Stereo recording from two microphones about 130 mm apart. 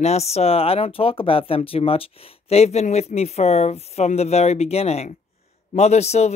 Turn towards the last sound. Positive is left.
turn(degrees=55)  # may be behind; listen again after turning